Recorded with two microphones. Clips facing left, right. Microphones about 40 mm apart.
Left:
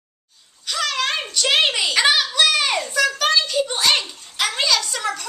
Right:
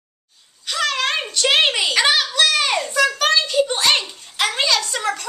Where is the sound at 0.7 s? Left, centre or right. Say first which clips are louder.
Right 2 dB; centre.